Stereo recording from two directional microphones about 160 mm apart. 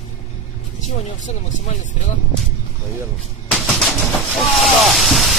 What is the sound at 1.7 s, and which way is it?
Speech, 45° left (ahead or behind).